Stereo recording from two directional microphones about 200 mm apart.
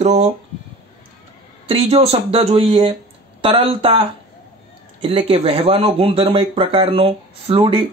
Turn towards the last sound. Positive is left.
turn(degrees=-30)  # may be behind; listen again after turning